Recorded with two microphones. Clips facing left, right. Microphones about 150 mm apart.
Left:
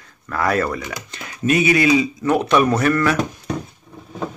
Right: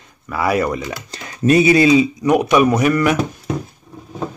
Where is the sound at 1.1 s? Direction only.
35° right (ahead or behind); by 3.1 s 15° right (ahead or behind).